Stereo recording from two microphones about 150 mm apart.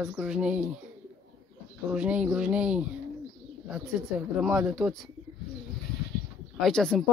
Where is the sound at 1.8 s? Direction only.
10° right (ahead or behind).